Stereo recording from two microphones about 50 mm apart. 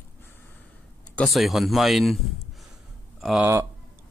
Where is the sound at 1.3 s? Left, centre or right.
Centre.